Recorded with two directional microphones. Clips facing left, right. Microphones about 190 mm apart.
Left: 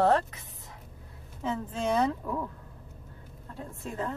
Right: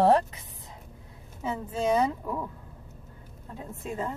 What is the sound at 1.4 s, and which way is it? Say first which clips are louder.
Speech: right 1 dB; 10° right (ahead or behind).